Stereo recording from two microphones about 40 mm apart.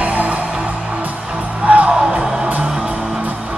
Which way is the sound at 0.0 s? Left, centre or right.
Right.